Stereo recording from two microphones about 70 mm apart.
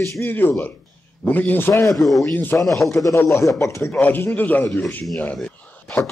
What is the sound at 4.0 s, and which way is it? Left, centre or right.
Speech, left.